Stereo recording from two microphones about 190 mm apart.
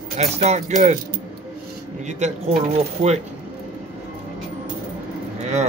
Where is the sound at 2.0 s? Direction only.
35° right (ahead or behind).